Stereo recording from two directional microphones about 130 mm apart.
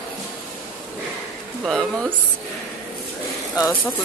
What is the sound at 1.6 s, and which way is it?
Speech, centre (ahead or behind).